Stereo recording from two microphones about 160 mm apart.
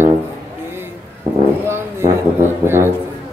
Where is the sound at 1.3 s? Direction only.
30° right (ahead or behind).